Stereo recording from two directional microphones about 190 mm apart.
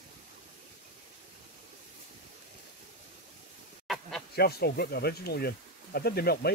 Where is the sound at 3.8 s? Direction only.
Centre (ahead or behind).